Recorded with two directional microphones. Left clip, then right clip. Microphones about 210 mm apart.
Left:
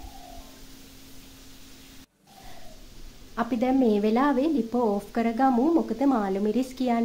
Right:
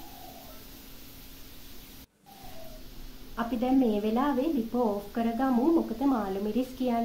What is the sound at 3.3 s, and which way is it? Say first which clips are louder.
A woman's voice: left 3 dB; 45° left (ahead or behind).